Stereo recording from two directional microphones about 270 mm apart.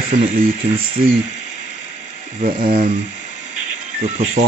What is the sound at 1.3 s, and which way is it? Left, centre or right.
Speech, right.